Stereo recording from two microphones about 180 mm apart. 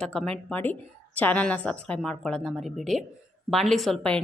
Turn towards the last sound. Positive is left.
turn(degrees=5)  # may be behind; listen again after turning